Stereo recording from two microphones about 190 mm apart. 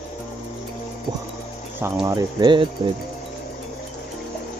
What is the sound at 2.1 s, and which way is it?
Speech, 20° right (ahead or behind).